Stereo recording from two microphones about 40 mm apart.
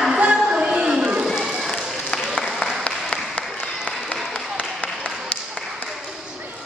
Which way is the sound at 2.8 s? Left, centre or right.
Left.